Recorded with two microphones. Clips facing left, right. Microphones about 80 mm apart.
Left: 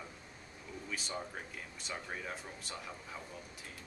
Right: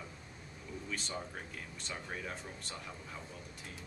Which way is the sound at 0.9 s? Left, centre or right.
Centre.